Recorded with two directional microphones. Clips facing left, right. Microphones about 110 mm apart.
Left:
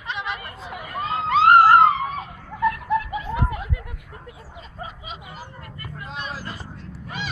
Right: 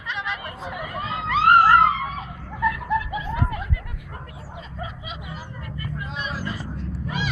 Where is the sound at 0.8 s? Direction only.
40° left (ahead or behind).